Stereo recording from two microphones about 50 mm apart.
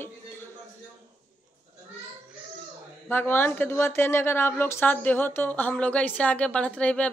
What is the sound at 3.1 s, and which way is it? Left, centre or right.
Speech, left.